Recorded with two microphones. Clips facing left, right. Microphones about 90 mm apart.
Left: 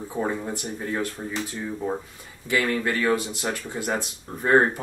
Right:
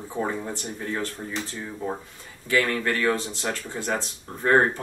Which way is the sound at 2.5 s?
15° left (ahead or behind).